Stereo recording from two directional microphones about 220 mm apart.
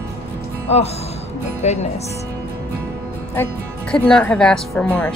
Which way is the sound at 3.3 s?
5° left (ahead or behind).